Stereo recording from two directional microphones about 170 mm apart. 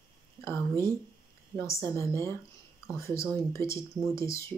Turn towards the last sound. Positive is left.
turn(degrees=15)  # may be behind; listen again after turning